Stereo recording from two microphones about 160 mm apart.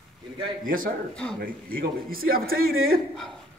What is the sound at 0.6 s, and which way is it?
A man's voice, 60° right (ahead or behind).